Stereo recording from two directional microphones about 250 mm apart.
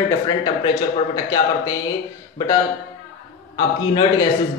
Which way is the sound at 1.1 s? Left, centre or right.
Centre.